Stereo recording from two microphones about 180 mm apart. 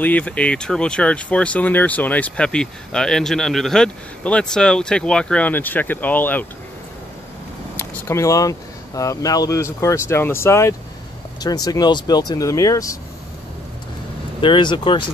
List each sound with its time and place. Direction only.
0.0 s speech: 10° left (ahead or behind)
7.7 s speech: 15° left (ahead or behind)
14.4 s speech: 25° left (ahead or behind)